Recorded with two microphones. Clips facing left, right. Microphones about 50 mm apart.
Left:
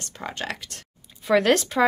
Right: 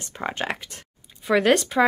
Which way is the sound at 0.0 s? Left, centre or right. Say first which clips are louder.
Right 4 dB; right.